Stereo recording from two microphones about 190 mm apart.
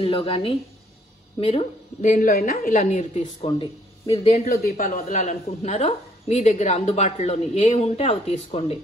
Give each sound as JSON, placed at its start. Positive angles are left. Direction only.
{"t": 0.0, "sound": "a woman's voice", "side_deg": 30}
{"t": 4.5, "sound": "a woman's voice", "side_deg": 50}